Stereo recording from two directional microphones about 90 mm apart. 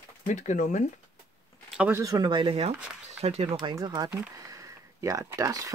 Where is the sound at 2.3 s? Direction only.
80° right.